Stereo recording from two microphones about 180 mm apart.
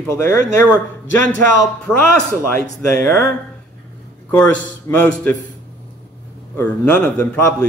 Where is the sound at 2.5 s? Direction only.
15° left (ahead or behind).